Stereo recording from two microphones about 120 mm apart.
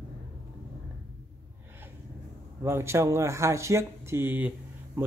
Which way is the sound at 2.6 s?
20° right (ahead or behind).